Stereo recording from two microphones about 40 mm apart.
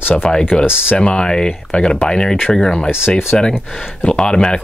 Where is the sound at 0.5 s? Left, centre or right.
Left.